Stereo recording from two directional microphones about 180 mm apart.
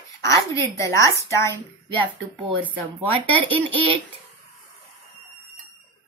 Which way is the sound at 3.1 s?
30° right (ahead or behind).